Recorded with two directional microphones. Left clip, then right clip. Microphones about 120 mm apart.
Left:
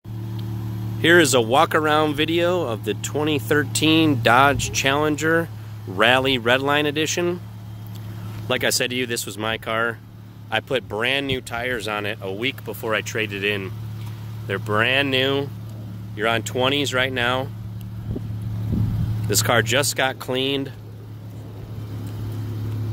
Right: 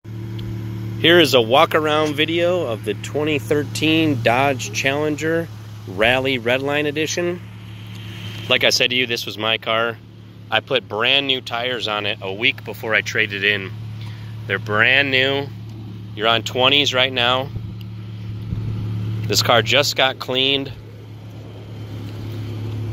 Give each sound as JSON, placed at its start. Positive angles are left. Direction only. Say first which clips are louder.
{"t": 1.0, "sound": "speech", "louder": "right 2 dB", "side_deg": 10}
{"t": 8.5, "sound": "speech", "louder": "right 6 dB", "side_deg": 20}
{"t": 16.2, "sound": "speech", "louder": "right 4 dB", "side_deg": 20}
{"t": 19.2, "sound": "speech", "louder": "right 4 dB", "side_deg": 20}